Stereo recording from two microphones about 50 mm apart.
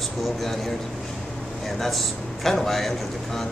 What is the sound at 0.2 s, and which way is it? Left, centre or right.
Speech, centre.